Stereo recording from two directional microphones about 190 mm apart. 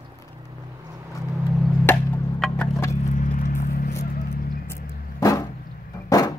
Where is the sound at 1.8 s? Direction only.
5° left (ahead or behind).